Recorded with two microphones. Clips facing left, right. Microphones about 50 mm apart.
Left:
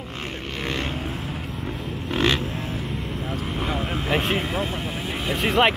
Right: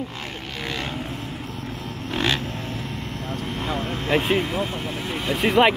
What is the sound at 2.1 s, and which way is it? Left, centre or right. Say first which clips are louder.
Vehicle: left 2 dB; left.